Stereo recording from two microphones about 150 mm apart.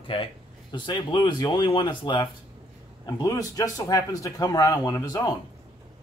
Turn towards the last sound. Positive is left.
turn(degrees=25)  # may be behind; listen again after turning